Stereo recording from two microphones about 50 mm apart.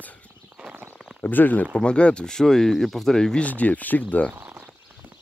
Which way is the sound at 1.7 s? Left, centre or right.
Left.